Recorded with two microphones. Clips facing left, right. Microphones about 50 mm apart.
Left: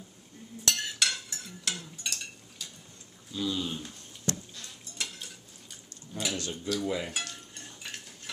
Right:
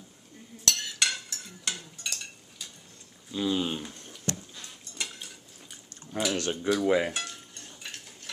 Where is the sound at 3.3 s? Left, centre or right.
Right.